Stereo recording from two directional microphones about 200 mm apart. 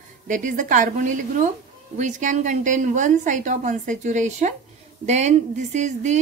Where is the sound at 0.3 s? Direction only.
40° right (ahead or behind).